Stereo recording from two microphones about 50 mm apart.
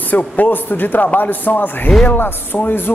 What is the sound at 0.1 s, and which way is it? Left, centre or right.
Speech, left.